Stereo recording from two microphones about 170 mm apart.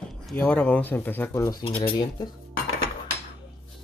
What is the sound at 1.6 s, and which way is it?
Speech, 30° left (ahead or behind).